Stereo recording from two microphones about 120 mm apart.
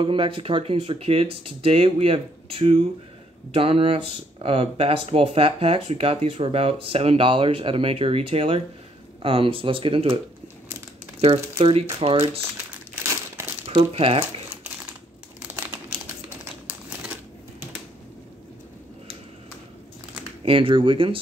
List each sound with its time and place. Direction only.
0.0 s speech: 45° right (ahead or behind)
11.1 s speech: 60° right (ahead or behind)
13.7 s speech: 55° right (ahead or behind)
15.4 s crumpling: 15° right (ahead or behind)
20.4 s speech: 50° right (ahead or behind)